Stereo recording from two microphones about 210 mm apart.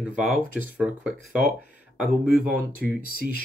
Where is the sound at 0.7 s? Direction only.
5° right (ahead or behind).